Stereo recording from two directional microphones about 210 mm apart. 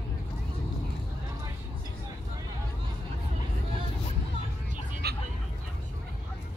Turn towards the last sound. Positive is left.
turn(degrees=-50)  # may be behind; listen again after turning